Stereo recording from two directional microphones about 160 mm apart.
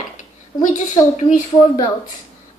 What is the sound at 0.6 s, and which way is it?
A woman's voice, 50° left (ahead or behind).